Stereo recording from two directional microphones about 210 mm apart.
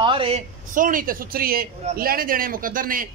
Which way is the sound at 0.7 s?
40° right (ahead or behind).